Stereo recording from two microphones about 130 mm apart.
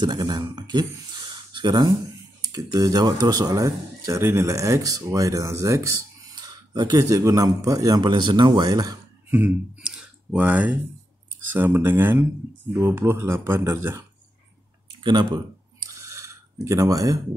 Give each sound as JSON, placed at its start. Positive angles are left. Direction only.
{"t": 0.0, "sound": "speech", "side_deg": -35}
{"t": 1.3, "sound": "a sound", "side_deg": -35}
{"t": 2.5, "sound": "speech", "side_deg": -30}
{"t": 6.3, "sound": "speech", "side_deg": -30}
{"t": 9.8, "sound": "clicking", "side_deg": -5}
{"t": 11.5, "sound": "speech", "side_deg": -15}
{"t": 15.0, "sound": "a sound", "side_deg": -35}
{"t": 16.6, "sound": "speech", "side_deg": -25}